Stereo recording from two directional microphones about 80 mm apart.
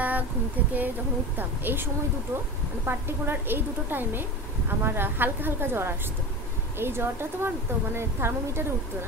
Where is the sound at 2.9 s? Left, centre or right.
Right.